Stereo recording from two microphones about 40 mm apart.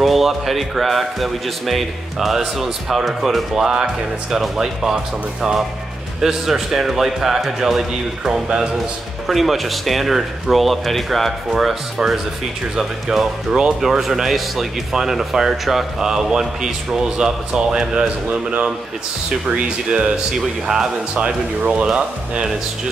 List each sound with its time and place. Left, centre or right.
0.0 s a man's voice: centre
6.2 s speech: centre
8.3 s speech: centre
9.3 s a man's voice: centre
19.4 s speech: right
20.3 s speech: centre
21.6 s speech: right